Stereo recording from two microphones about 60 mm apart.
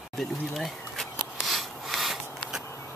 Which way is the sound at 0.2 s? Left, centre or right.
Centre.